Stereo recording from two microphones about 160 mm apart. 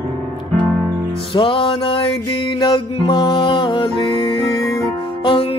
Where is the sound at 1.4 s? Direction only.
30° left (ahead or behind).